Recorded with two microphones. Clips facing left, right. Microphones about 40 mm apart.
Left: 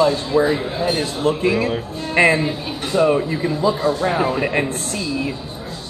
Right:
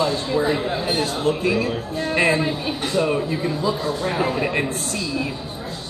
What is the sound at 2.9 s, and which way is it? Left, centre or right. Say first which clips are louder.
Speech: left 6 dB; centre.